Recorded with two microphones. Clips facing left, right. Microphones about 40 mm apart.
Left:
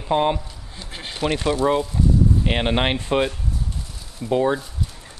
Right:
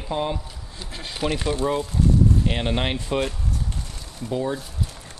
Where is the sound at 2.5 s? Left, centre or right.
Left.